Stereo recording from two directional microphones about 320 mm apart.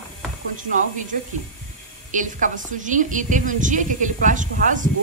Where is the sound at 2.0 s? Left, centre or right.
Right.